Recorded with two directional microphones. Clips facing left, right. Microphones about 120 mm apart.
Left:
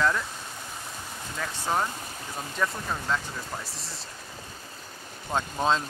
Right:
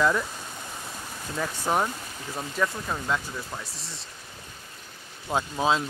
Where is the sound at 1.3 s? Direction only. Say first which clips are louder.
Right 3 dB; 15° right (ahead or behind).